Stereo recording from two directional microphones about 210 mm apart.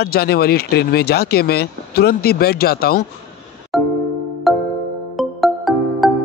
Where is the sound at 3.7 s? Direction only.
Centre (ahead or behind).